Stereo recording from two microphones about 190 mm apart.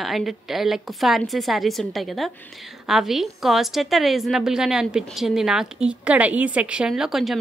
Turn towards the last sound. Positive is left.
turn(degrees=0)  # may be behind; listen again after turning